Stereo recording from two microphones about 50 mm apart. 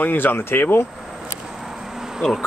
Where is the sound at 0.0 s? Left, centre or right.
Left.